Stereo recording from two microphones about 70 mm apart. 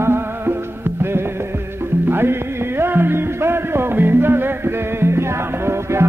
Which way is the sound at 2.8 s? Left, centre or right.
Right.